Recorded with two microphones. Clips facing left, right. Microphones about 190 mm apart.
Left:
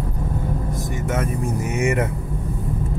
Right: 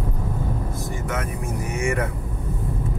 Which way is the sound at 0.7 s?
25° left (ahead or behind).